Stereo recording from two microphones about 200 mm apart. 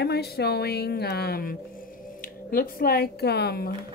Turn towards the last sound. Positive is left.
turn(degrees=50)  # may be behind; listen again after turning